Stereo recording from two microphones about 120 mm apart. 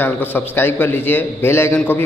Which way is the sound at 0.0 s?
20° left (ahead or behind).